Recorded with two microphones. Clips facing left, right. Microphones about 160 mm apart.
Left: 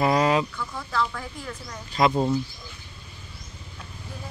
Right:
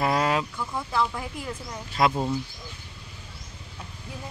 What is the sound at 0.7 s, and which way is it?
Speech, 20° right (ahead or behind).